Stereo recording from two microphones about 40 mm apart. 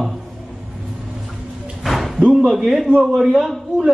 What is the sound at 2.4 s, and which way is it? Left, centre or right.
A man's voice, centre.